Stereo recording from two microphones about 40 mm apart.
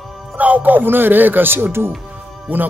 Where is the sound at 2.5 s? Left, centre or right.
Right.